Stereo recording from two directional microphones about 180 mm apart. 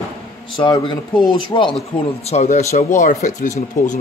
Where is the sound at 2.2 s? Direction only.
40° left (ahead or behind).